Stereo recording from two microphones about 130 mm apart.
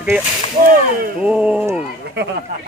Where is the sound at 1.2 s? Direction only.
10° right (ahead or behind).